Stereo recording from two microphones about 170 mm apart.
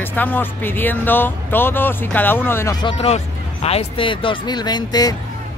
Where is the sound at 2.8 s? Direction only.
35° left (ahead or behind).